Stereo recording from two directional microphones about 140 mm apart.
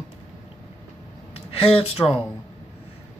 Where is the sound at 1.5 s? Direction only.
45° left (ahead or behind).